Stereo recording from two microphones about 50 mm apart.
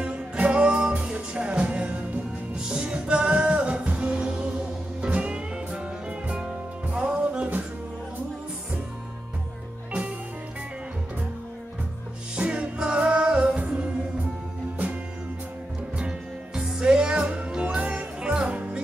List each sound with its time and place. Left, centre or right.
0.0 s music: right
12.4 s music: right
14.8 s music: right
16.0 s music: centre